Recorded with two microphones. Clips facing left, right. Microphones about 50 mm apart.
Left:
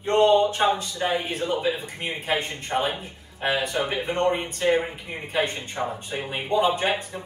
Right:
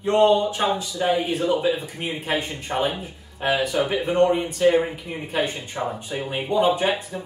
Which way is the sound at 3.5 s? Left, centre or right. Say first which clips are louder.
Right 4 dB; left.